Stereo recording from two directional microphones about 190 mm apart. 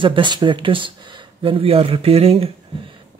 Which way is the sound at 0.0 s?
25° right (ahead or behind).